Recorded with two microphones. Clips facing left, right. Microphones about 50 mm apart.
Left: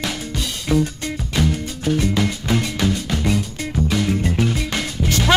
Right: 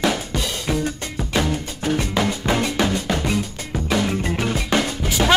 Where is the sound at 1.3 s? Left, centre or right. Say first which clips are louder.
Even; right.